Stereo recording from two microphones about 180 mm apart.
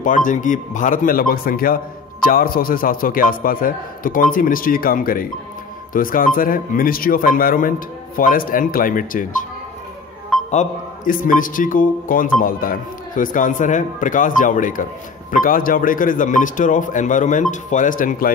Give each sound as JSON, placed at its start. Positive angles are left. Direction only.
{"t": 0.0, "sound": "a man's voice", "side_deg": 45}
{"t": 10.5, "sound": "a man's voice", "side_deg": 45}